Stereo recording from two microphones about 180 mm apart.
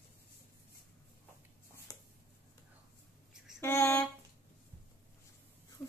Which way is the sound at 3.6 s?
15° left (ahead or behind).